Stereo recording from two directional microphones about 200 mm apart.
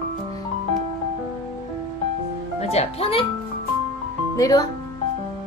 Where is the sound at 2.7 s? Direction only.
30° left (ahead or behind).